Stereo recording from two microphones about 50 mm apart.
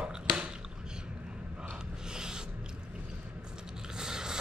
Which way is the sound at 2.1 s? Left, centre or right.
Centre.